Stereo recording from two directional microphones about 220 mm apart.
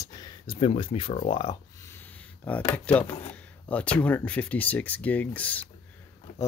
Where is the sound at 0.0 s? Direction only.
20° left (ahead or behind).